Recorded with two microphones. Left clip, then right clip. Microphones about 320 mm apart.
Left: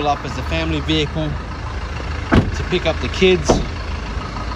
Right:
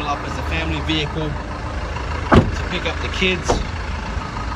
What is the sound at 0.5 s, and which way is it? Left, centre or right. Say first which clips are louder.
Speech: left 3 dB; centre.